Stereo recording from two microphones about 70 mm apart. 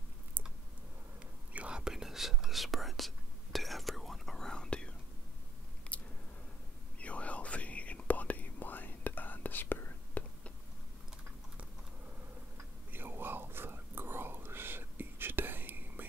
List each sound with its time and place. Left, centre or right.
1.5 s whispering: centre
5.9 s a sound: centre
7.0 s whispering: centre
12.9 s whispering: right